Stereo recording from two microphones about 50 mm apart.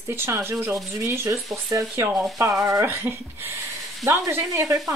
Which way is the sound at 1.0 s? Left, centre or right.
Right.